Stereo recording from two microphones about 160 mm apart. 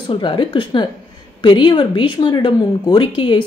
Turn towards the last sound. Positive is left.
turn(degrees=30)  # may be behind; listen again after turning